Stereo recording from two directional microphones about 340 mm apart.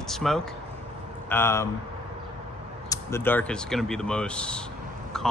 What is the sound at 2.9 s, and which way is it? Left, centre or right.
Speech, centre.